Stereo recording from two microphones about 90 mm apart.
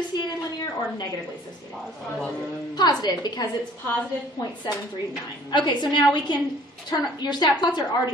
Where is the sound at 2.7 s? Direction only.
50° left (ahead or behind).